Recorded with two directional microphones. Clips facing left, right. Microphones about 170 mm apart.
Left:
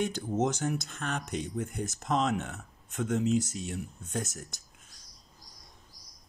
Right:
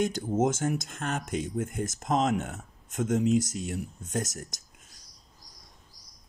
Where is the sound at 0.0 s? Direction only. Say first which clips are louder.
Right 3 dB; 45° right (ahead or behind).